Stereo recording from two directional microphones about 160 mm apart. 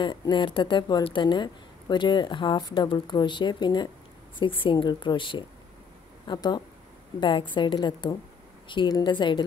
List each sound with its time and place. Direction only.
0.0 s a woman's voice: 30° left (ahead or behind)